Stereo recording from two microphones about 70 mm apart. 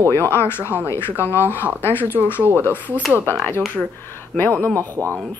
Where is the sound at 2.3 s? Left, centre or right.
Right.